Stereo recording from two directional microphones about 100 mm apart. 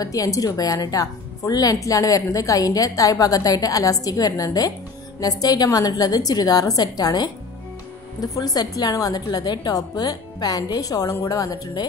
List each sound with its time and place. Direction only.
0.0 s a woman's voice: 35° left (ahead or behind)